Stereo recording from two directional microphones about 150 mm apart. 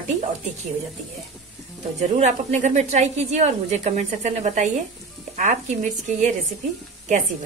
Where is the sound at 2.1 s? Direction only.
50° right (ahead or behind).